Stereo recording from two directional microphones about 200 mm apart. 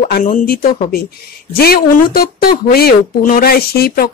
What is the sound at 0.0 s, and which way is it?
Speech, 40° left (ahead or behind).